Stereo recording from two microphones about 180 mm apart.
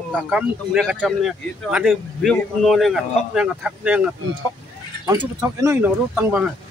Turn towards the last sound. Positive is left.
turn(degrees=-10)  # may be behind; listen again after turning